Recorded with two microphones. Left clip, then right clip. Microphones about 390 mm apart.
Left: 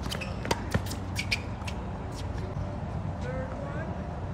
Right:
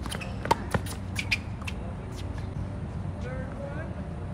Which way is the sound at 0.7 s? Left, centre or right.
Centre.